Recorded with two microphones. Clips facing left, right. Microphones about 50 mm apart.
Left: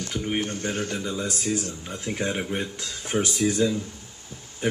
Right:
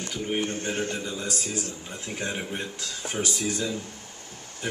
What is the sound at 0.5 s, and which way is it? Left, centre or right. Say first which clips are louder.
Speech: even; right.